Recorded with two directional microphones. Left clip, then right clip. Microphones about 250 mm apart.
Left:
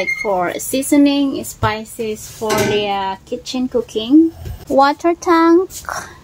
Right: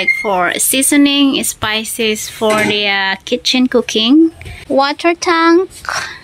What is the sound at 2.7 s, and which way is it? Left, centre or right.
Speech, centre.